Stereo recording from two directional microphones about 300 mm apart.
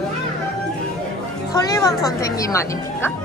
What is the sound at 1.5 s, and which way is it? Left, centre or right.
Speech, centre.